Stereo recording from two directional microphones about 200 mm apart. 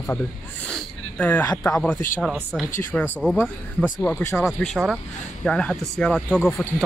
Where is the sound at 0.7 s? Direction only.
10° left (ahead or behind).